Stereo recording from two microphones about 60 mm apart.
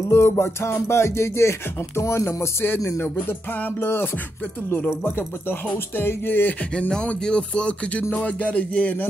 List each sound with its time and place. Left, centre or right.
0.1 s music: left
3.0 s speech: left
6.9 s speech: centre